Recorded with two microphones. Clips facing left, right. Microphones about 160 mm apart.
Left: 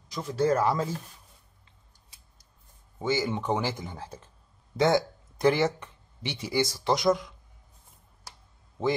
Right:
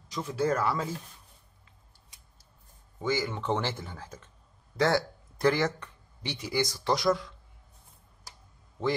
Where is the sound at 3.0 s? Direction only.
20° left (ahead or behind).